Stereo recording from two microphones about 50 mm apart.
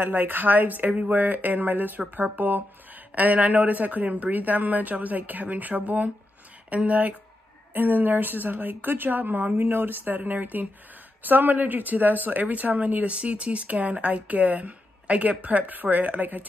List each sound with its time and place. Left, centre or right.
0.0 s a woman's voice: right
7.7 s a woman's voice: right
9.5 s a woman's voice: right